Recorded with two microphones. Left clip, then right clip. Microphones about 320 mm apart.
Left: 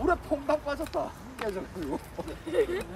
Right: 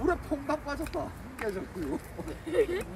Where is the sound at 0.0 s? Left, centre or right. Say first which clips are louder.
Left 3 dB; centre.